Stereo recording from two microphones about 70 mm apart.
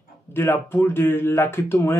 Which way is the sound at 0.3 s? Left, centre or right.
Left.